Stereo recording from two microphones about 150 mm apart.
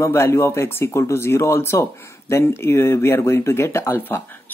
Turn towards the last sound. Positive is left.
turn(degrees=15)  # may be behind; listen again after turning